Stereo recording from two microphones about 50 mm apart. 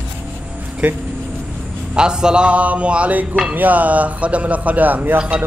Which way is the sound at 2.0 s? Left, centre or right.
Centre.